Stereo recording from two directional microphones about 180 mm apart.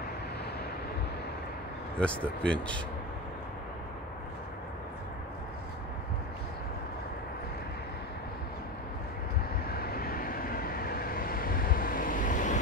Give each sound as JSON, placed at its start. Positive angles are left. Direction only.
{"t": 2.0, "sound": "speech", "side_deg": 5}
{"t": 9.7, "sound": "vehicle", "side_deg": 60}